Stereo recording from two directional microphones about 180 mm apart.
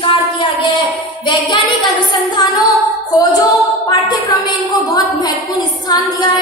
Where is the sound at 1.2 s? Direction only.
25° left (ahead or behind).